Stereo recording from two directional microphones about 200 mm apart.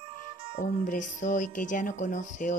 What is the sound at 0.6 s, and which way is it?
Speech, 40° left (ahead or behind).